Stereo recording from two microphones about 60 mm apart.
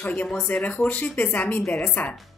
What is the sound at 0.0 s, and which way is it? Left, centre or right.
A woman's voice, left.